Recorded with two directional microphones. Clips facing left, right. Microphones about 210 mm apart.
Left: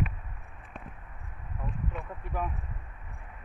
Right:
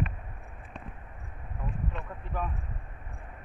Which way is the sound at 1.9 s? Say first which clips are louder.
Left 1 dB; 10° left (ahead or behind).